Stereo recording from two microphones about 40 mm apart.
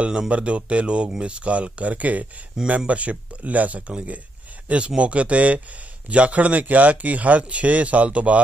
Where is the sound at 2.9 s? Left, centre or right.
Right.